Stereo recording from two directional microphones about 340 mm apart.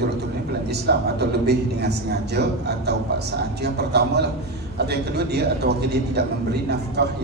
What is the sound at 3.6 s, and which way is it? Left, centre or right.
Speech, right.